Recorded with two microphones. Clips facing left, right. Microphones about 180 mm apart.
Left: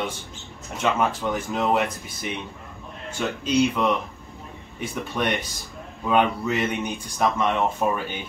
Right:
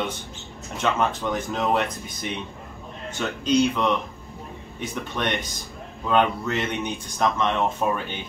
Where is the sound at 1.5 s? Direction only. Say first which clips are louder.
Left 2 dB; 5° left (ahead or behind).